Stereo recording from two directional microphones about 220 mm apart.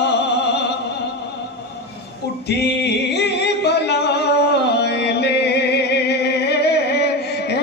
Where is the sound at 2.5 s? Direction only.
50° left (ahead or behind).